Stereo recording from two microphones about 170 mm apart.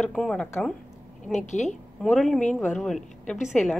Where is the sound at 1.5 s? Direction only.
45° left (ahead or behind).